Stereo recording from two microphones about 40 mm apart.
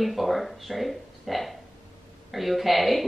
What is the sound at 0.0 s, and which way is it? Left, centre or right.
A woman's voice, centre.